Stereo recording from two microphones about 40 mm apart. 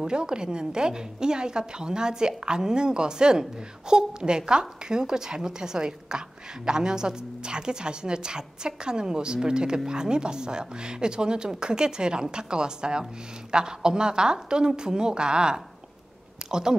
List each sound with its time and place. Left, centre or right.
0.0 s a woman's voice: right